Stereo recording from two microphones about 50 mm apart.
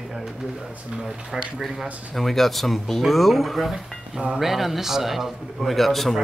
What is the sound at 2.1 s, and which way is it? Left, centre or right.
Speech, centre.